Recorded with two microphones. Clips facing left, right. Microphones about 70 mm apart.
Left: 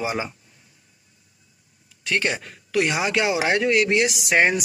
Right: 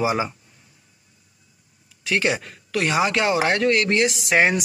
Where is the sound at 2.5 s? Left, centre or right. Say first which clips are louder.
Even; centre.